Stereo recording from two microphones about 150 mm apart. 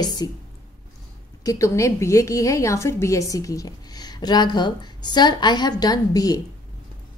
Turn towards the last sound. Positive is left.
turn(degrees=25)  # may be behind; listen again after turning